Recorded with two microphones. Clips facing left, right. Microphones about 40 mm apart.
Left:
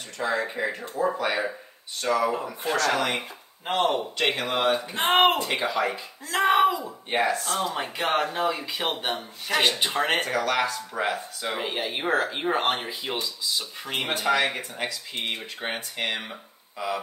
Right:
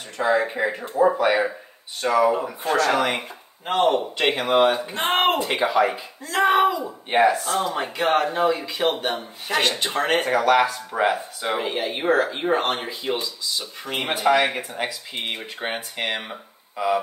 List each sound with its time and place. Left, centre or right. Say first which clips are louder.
0.2 s speech: right 6 dB; centre
3.2 s speech: right 1 dB; centre
4.2 s speech: right 7 dB; centre
4.9 s speech: even; centre
5.4 s speech: right 5 dB; centre
6.2 s speech: right 2 dB; centre
7.1 s speech: right 6 dB; centre
10.3 s speech: right 6 dB; centre
11.6 s speech: right 4 dB; centre
14.0 s speech: right 5 dB; centre